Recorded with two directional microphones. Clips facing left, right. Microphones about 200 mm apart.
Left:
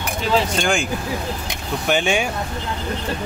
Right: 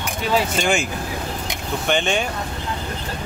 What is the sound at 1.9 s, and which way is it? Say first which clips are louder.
Speech: left 2 dB; 10° left (ahead or behind).